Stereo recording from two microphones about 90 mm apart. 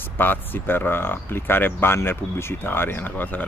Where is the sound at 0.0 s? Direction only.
20° left (ahead or behind).